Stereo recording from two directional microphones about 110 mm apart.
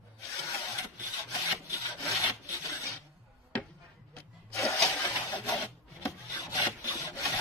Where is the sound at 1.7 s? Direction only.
30° left (ahead or behind).